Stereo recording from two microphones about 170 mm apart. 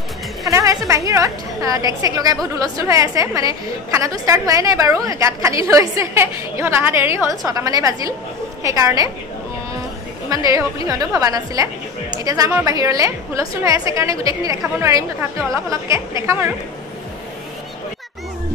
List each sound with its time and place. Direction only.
0.5 s a woman's voice: 15° right (ahead or behind)
10.3 s a woman's voice: 20° right (ahead or behind)